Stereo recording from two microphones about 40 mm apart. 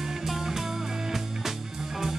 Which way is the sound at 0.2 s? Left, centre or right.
Centre.